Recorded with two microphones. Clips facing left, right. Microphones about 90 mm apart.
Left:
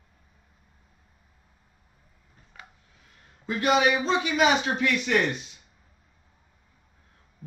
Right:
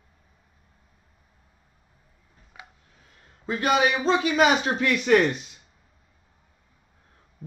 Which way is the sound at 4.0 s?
30° right (ahead or behind).